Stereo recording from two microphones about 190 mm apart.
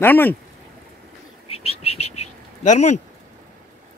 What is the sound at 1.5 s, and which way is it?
Bird, 30° left (ahead or behind).